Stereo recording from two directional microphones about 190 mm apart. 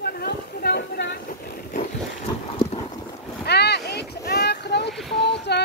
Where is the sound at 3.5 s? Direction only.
60° left (ahead or behind).